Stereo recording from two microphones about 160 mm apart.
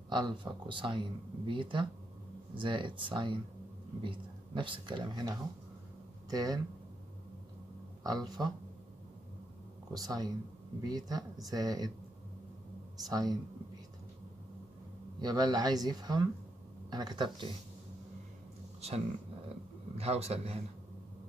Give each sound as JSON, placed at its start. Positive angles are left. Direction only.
{"t": 0.1, "sound": "speech", "side_deg": -30}
{"t": 8.0, "sound": "speech", "side_deg": -25}
{"t": 9.9, "sound": "speech", "side_deg": -25}
{"t": 13.0, "sound": "speech", "side_deg": -25}
{"t": 15.1, "sound": "speech", "side_deg": -25}
{"t": 18.8, "sound": "speech", "side_deg": -40}